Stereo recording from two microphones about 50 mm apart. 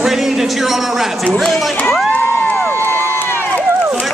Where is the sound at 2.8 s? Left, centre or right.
Left.